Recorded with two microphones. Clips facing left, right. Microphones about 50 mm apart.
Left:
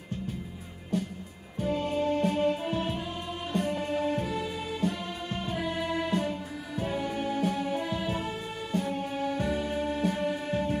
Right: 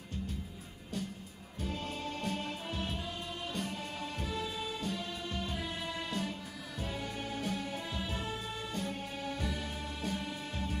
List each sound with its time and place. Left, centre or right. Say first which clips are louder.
1.6 s music: left 11 dB; left
2.4 s music: left 11 dB; left